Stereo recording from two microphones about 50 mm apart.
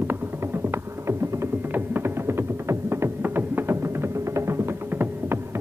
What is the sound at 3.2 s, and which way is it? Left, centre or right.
Music, right.